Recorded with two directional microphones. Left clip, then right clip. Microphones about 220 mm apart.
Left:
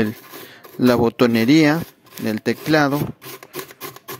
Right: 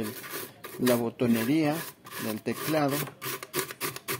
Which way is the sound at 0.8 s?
45° left (ahead or behind).